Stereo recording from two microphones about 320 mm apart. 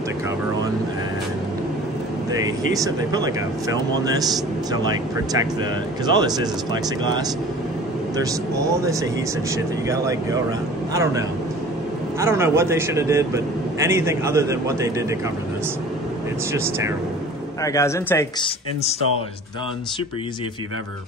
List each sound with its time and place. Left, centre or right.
2.7 s a man's voice: centre
6.0 s a man's voice: centre
9.8 s a man's voice: centre
16.5 s a man's voice: centre
17.6 s speech: centre